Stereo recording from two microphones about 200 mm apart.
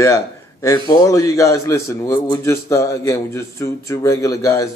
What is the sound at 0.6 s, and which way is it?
Speech, 15° left (ahead or behind).